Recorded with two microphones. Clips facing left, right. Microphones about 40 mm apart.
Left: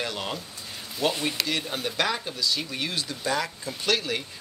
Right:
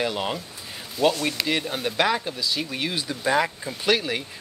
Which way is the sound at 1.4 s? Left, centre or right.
Centre.